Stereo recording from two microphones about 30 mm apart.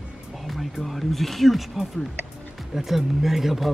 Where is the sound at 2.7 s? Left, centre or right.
Centre.